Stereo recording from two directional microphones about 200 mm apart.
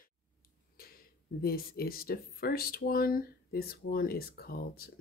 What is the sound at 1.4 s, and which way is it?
Speech, 50° left (ahead or behind).